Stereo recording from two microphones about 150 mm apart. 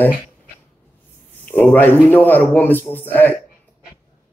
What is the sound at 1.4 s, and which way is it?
Speech, 10° left (ahead or behind).